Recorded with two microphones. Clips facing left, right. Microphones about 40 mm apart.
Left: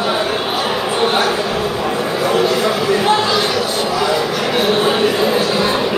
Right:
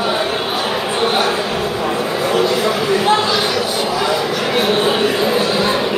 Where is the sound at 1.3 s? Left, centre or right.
Centre.